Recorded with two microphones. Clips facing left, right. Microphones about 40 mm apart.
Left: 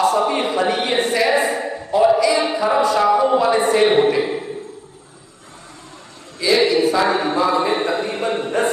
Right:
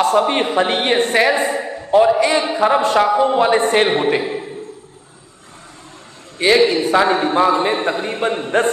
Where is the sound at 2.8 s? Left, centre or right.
Right.